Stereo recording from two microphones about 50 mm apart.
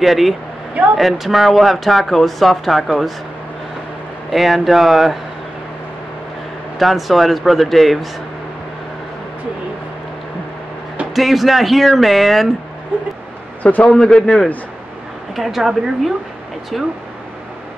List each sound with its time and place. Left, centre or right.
0.0 s speech: centre
4.3 s speech: centre
6.8 s speech: centre
11.1 s speech: centre
12.9 s speech: right
13.6 s a man's voice: left
13.8 s a man's voice: centre
15.3 s speech: centre